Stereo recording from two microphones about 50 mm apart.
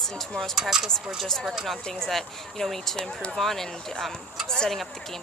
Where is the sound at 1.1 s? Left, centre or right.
Centre.